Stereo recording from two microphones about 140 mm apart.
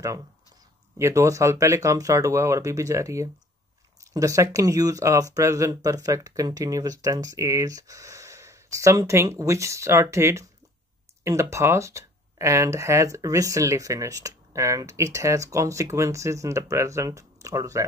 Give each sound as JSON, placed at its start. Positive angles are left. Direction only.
{"t": 0.9, "sound": "speech", "side_deg": -20}